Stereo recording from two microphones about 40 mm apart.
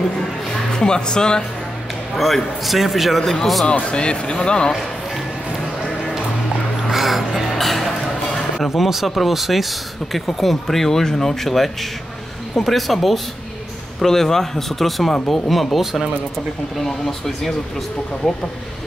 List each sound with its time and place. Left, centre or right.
0.7 s speech: centre
2.1 s speech: centre
3.9 s speech: left
6.9 s music: centre
8.6 s speech: centre
16.8 s speech: centre